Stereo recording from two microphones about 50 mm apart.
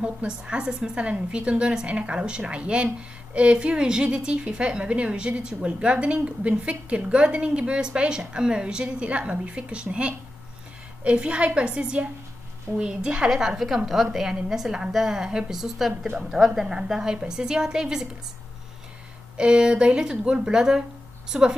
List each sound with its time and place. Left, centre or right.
0.0 s a woman's voice: centre
19.3 s a woman's voice: centre